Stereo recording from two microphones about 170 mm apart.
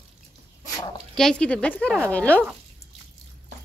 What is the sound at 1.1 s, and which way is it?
Speech, 5° left (ahead or behind).